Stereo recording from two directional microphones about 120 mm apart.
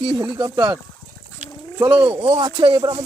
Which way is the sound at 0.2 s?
35° right (ahead or behind).